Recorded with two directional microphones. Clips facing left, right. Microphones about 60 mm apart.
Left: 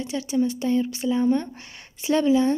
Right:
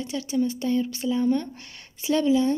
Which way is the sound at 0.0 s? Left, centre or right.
Centre.